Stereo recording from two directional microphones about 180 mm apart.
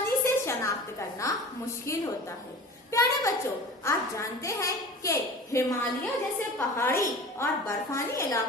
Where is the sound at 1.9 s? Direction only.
15° left (ahead or behind).